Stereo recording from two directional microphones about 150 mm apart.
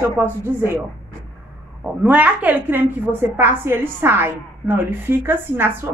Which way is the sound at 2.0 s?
10° right (ahead or behind).